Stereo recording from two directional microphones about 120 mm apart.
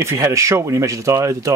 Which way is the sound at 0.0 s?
25° right (ahead or behind).